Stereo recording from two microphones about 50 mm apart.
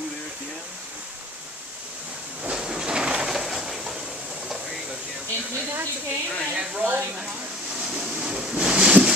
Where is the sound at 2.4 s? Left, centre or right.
Centre.